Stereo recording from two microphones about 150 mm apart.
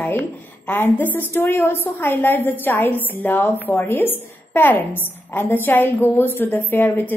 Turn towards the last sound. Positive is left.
turn(degrees=15)  # may be behind; listen again after turning